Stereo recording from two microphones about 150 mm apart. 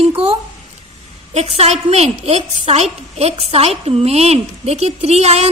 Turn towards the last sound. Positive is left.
turn(degrees=-45)  # may be behind; listen again after turning